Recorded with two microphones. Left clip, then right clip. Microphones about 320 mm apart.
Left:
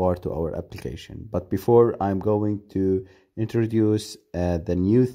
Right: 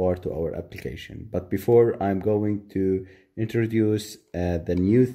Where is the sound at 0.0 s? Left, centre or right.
Left.